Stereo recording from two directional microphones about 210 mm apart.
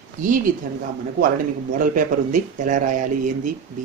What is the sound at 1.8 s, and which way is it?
Speech, 40° right (ahead or behind).